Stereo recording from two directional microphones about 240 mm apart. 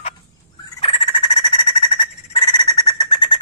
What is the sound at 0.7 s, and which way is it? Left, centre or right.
Frog, left.